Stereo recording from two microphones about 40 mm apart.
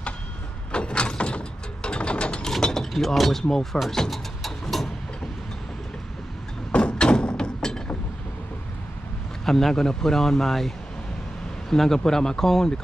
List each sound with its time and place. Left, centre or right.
0.7 s mechanisms: left
2.4 s mechanisms: centre
3.4 s a man's voice: centre
3.9 s music: centre
6.7 s a sound: left
9.4 s a man's voice: centre
11.7 s a man's voice: centre